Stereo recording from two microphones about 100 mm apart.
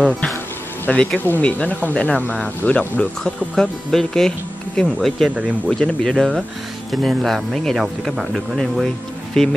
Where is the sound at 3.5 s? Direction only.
5° left (ahead or behind).